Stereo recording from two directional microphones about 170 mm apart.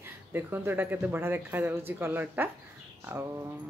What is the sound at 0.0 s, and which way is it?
Speech, 10° right (ahead or behind).